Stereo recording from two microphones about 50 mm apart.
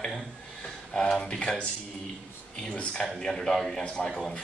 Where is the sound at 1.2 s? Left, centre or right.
Centre.